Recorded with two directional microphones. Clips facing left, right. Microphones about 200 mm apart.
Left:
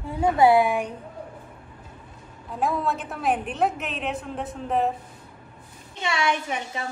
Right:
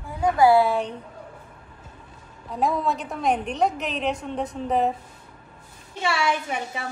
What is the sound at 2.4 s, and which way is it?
A woman's voice, centre (ahead or behind).